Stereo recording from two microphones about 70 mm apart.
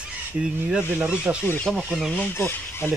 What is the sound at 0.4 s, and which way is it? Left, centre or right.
Speech, centre.